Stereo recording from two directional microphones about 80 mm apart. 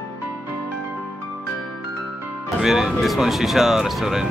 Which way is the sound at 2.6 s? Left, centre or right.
Centre.